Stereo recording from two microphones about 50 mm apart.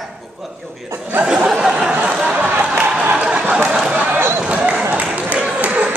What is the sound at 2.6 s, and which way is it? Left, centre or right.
Music, right.